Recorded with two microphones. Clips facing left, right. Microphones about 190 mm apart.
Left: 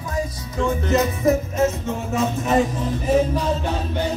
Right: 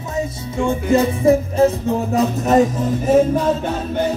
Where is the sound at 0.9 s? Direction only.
30° right (ahead or behind).